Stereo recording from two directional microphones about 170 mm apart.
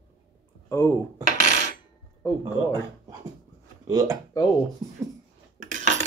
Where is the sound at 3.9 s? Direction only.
20° right (ahead or behind).